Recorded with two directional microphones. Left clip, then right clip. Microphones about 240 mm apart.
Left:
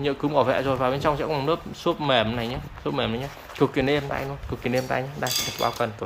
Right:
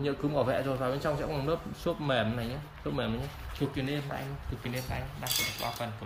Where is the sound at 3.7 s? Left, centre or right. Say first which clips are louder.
Left 11 dB; centre.